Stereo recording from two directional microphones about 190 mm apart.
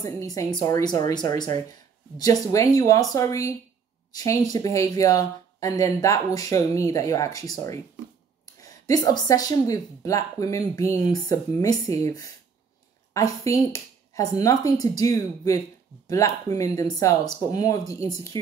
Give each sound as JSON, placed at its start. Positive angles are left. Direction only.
{"t": 0.0, "sound": "speech", "side_deg": 15}